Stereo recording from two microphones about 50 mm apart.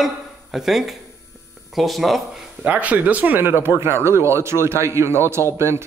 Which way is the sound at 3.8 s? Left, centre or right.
Right.